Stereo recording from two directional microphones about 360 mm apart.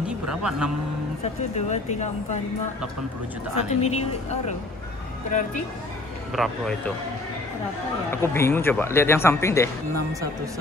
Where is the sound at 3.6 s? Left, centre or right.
Centre.